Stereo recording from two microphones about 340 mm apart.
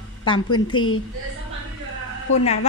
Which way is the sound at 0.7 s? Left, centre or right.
Left.